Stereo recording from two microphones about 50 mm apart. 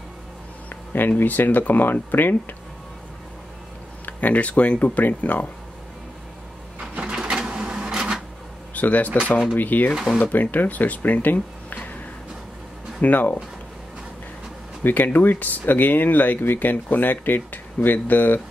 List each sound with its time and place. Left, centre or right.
0.7 s speech: left
4.0 s speech: left
6.8 s printer: centre
8.7 s speech: left
11.3 s a sound: left
13.0 s speech: left
14.8 s speech: left